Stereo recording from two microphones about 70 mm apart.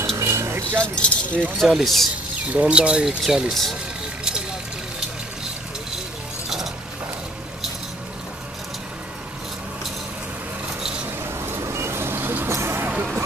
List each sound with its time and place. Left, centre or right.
0.2 s a sound: right
0.7 s speech: centre
1.6 s speech: centre
2.5 s speech: centre
4.2 s vehicle: centre
11.2 s vehicle: right